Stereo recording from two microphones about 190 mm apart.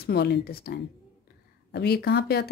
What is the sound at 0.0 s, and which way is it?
A woman's voice, 60° left (ahead or behind).